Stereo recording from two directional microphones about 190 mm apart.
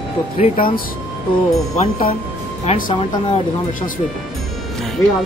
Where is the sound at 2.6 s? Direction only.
30° left (ahead or behind).